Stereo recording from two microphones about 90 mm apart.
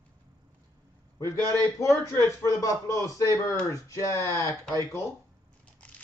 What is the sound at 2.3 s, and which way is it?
Speech, 35° left (ahead or behind).